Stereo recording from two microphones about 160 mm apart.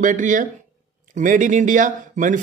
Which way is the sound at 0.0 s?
55° right (ahead or behind).